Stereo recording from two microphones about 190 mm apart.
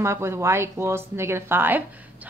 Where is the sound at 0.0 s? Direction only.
15° right (ahead or behind).